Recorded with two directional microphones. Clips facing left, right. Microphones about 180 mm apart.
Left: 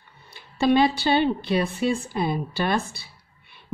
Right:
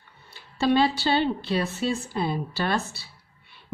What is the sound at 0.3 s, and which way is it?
A woman's voice, 15° left (ahead or behind).